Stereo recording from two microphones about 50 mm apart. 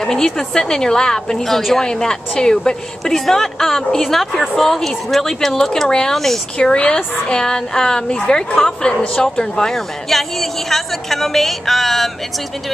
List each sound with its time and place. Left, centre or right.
0.0 s a woman's voice: centre
6.7 s a woman's voice: centre